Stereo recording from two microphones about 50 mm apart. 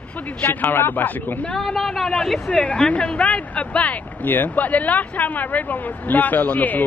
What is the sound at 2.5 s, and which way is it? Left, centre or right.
Speech, left.